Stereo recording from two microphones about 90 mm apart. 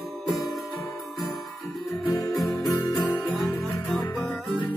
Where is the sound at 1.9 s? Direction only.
15° left (ahead or behind).